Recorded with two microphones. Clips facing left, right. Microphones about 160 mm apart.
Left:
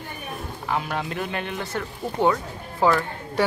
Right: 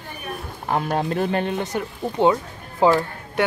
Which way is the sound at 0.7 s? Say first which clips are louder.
Right 5 dB; 45° right (ahead or behind).